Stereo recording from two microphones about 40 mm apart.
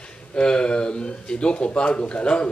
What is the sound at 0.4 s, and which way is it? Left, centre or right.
A man's voice, left.